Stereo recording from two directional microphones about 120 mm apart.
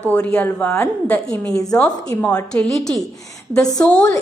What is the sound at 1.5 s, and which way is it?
Speech, 30° left (ahead or behind).